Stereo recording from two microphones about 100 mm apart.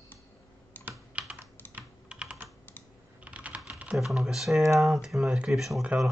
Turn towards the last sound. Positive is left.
turn(degrees=-10)  # may be behind; listen again after turning